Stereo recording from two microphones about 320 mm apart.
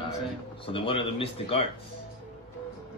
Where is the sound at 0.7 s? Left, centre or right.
Centre.